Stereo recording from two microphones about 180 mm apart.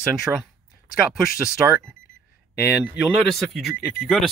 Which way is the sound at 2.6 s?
Centre (ahead or behind).